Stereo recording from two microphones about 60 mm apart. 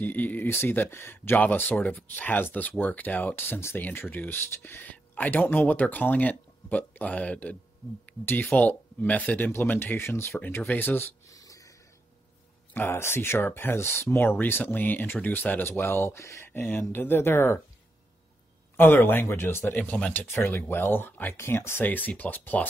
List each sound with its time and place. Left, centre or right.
0.0 s speech: left
4.8 s speech: left
10.7 s speech: left
11.2 s a sound: left
12.7 s speech: left
16.5 s speech: left
18.8 s speech: left
19.7 s speech: left
21.4 s speech: left